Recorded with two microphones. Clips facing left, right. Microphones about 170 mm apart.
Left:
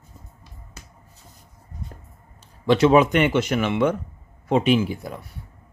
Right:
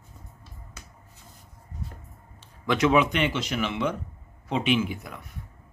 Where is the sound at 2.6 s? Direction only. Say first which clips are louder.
Left 6 dB; 30° left (ahead or behind).